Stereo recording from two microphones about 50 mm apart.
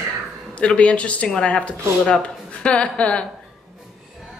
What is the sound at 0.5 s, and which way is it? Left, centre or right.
Speech, left.